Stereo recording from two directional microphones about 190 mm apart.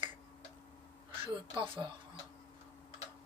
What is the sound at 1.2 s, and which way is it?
Speech, 25° right (ahead or behind).